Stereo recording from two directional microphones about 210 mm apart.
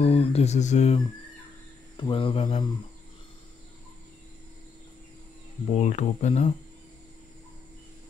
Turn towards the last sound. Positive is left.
turn(degrees=30)  # may be behind; listen again after turning